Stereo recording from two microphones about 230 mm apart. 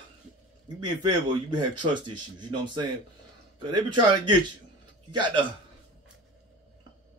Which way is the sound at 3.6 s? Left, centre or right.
Centre.